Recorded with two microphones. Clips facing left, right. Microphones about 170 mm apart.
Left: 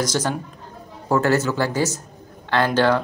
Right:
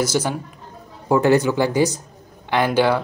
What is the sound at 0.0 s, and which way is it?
Speech, 10° right (ahead or behind).